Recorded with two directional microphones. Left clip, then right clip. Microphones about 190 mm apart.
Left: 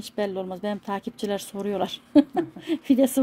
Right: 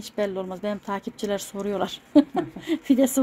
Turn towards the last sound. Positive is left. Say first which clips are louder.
# even
turn(degrees=10)  # may be behind; listen again after turning